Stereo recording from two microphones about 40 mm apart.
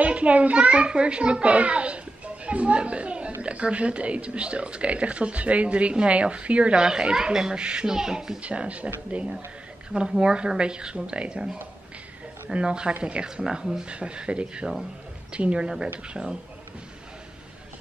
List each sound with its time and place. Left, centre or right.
0.0 s a child's voice: right
6.7 s a child's voice: right
8.4 s speech: right
9.9 s a child's voice: centre
12.5 s a child's voice: right
13.8 s a child's voice: right
16.1 s speech: centre